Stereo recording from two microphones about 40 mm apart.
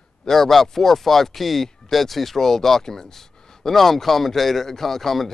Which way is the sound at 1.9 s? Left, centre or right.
Centre.